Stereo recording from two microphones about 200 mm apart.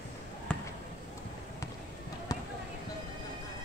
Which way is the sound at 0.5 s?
5° left (ahead or behind).